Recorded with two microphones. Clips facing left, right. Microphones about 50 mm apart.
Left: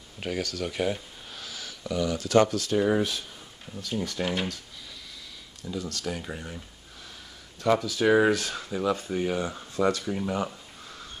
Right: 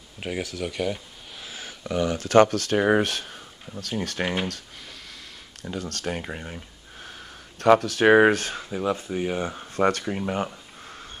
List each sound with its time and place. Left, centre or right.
0.2 s speech: centre
0.7 s speech: centre
1.4 s speech: right
4.5 s a sound: right
7.0 s speech: right
8.5 s speech: centre
9.1 s speech: centre
9.4 s speech: right
9.8 s speech: right